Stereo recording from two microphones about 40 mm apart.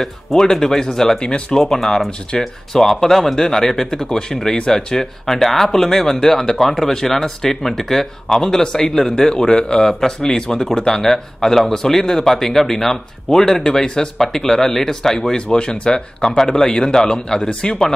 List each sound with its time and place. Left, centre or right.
0.3 s a man's voice: centre
15.5 s a man's voice: left